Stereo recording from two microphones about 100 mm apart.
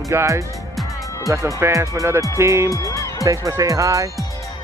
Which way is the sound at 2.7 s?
35° left (ahead or behind).